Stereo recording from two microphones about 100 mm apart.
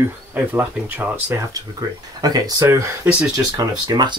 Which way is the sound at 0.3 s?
15° right (ahead or behind).